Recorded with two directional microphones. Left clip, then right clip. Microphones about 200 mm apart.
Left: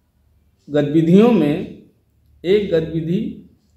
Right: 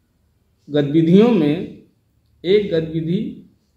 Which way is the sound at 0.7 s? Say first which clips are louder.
Even; 10° right (ahead or behind).